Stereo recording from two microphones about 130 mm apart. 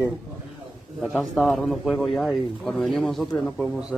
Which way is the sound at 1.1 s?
Centre (ahead or behind).